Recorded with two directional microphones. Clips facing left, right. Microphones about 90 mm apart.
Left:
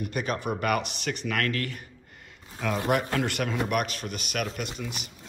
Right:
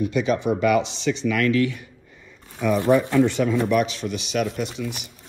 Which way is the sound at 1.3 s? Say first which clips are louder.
Right 8 dB; 50° left (ahead or behind).